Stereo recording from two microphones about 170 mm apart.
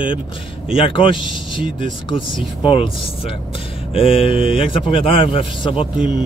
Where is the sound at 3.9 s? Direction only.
35° left (ahead or behind).